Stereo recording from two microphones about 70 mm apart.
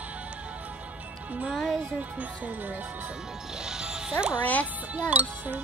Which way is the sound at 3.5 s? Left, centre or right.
Centre.